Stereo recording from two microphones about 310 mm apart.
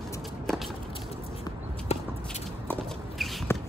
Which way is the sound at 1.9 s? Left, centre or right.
Centre.